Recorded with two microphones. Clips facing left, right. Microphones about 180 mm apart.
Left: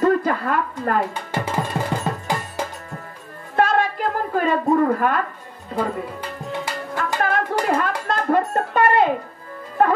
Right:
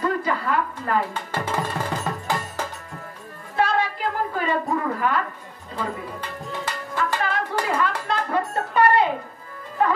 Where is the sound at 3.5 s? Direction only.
50° left (ahead or behind).